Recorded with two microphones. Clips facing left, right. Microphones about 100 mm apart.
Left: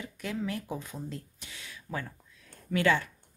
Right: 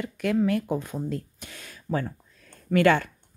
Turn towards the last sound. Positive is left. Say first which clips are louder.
# right 6 dB
turn(degrees=-60)  # may be behind; listen again after turning